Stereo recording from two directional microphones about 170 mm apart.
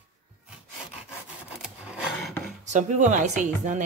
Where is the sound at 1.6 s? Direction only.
5° right (ahead or behind).